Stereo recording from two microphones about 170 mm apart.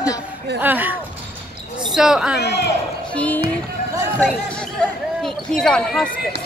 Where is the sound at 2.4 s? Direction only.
70° left (ahead or behind).